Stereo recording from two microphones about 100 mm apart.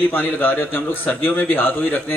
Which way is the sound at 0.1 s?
15° left (ahead or behind).